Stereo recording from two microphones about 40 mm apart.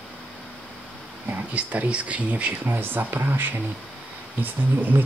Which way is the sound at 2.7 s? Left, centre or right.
Right.